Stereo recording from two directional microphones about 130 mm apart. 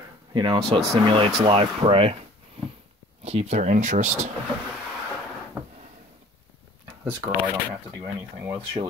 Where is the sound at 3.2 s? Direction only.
55° right (ahead or behind).